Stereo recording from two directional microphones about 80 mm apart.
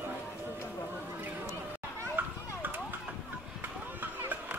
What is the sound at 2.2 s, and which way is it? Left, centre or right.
Children playing, right.